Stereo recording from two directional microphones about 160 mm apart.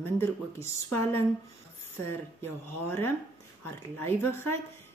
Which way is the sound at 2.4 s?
15° left (ahead or behind).